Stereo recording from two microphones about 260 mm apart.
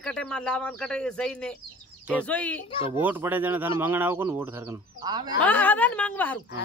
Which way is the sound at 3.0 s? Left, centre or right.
Centre.